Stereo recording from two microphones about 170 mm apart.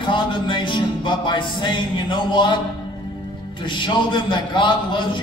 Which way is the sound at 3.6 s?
30° left (ahead or behind).